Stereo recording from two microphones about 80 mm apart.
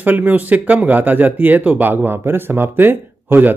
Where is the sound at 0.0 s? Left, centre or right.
Right.